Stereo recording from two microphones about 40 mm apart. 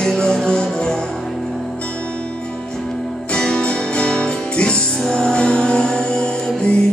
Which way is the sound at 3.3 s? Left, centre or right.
Left.